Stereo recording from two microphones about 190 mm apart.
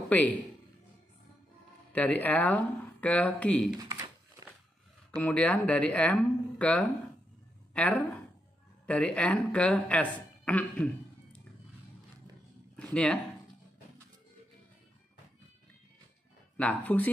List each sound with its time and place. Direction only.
0.1 s a woman's voice: 10° left (ahead or behind)
1.9 s a woman's voice: 10° left (ahead or behind)
3.7 s speech: 20° right (ahead or behind)
5.2 s a woman's voice: 5° left (ahead or behind)
12.7 s speech: 5° left (ahead or behind)
16.5 s a woman's voice: 10° left (ahead or behind)